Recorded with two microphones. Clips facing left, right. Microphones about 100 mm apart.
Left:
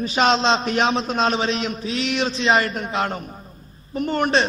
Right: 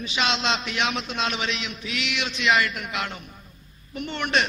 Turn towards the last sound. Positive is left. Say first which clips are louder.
# left 6 dB
turn(degrees=40)  # may be behind; listen again after turning